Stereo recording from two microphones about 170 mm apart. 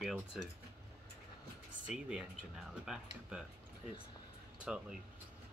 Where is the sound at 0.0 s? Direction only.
Centre (ahead or behind).